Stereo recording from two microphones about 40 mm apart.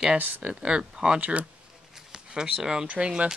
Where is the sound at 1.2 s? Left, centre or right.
Right.